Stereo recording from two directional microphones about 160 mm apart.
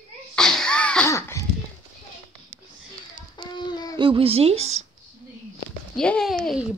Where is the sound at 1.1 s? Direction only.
20° left (ahead or behind).